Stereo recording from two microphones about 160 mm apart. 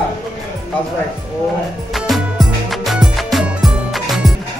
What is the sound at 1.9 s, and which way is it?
Music, centre (ahead or behind).